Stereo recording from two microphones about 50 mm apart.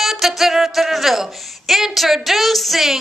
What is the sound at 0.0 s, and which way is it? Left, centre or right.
Music, centre.